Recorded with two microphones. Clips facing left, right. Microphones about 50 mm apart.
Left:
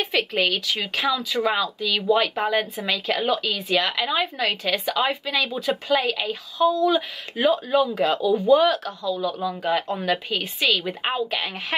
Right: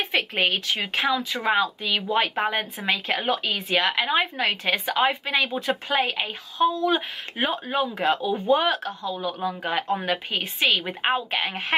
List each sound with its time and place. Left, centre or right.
0.0 s speech: right